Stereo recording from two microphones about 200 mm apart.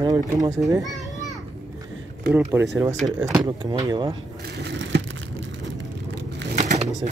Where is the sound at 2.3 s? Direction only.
10° right (ahead or behind).